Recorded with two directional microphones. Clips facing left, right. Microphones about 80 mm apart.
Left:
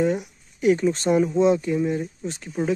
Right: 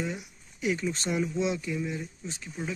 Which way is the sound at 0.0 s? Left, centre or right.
Left.